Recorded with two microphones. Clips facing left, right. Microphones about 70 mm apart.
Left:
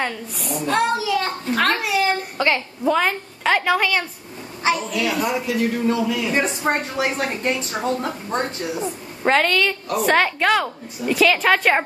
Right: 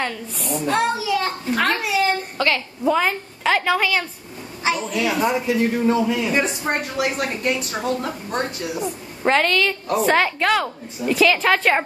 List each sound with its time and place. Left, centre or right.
0.0 s a woman's voice: centre
2.3 s a woman's voice: centre
2.8 s a woman's voice: centre
5.1 s speech: right
6.3 s a woman's voice: left
9.2 s a woman's voice: centre